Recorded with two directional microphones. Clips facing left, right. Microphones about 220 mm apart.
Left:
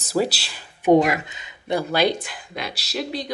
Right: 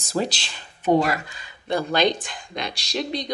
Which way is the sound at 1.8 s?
10° left (ahead or behind).